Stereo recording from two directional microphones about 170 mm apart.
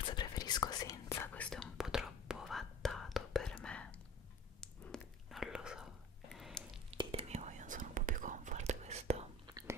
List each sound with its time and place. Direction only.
0.0 s whispering: 25° left (ahead or behind); by 6.6 s centre (ahead or behind)
6.9 s whispering: 35° right (ahead or behind)
9.5 s chewing: 20° right (ahead or behind)